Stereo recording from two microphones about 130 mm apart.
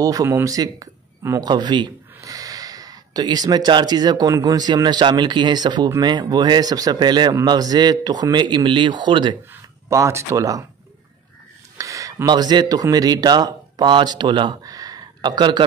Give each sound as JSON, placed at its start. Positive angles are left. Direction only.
{"t": 0.0, "sound": "speech", "side_deg": -25}
{"t": 1.5, "sound": "speech", "side_deg": -35}
{"t": 9.5, "sound": "speech", "side_deg": -25}
{"t": 11.8, "sound": "speech", "side_deg": -25}